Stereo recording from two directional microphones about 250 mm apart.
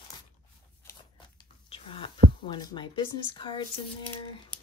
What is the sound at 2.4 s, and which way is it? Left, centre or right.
Speech, centre.